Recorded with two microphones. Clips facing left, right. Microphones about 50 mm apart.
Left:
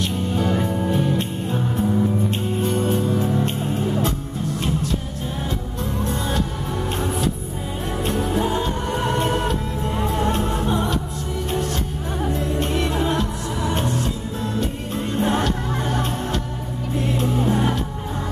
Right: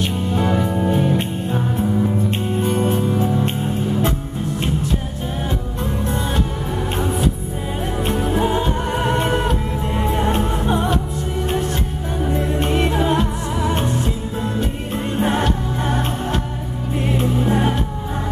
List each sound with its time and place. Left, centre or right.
0.0 s music: right
2.8 s music: right
8.0 s music: right
12.4 s music: right
15.1 s music: right